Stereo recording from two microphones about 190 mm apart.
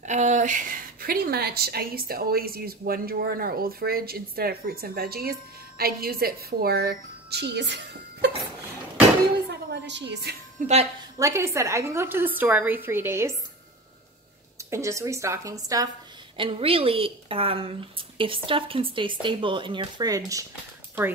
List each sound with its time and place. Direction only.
0.0 s a woman's voice: 40° right (ahead or behind); by 8.3 s 65° right (ahead or behind)
9.5 s a woman's voice: 60° right (ahead or behind)
10.6 s a woman's voice: 40° right (ahead or behind)
11.1 s a woman's voice: 15° right (ahead or behind)
14.6 s a woman's voice: 15° right (ahead or behind)
16.3 s a woman's voice: 30° right (ahead or behind)